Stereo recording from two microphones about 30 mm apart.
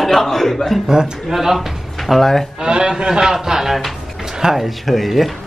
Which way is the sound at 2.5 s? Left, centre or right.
Right.